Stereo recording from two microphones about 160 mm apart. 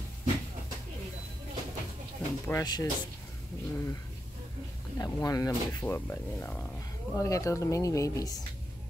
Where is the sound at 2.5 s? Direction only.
20° left (ahead or behind).